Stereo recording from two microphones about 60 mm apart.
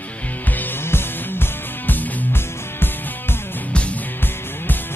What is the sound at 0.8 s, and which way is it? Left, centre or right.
Music, left.